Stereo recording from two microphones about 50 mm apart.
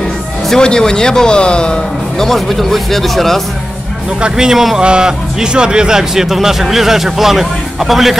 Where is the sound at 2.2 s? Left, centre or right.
Centre.